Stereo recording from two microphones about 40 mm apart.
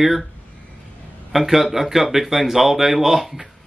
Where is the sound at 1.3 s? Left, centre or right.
Centre.